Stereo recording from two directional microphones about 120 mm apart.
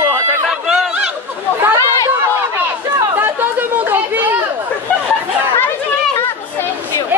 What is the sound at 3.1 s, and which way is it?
Chatter, 15° right (ahead or behind).